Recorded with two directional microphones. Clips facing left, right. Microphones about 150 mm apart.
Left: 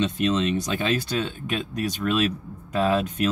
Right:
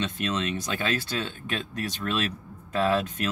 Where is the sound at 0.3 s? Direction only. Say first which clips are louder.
Left 5 dB; 20° left (ahead or behind).